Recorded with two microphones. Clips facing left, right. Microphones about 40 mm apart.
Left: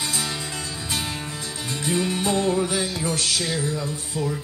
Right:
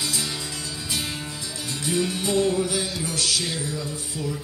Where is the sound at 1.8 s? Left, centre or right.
Left.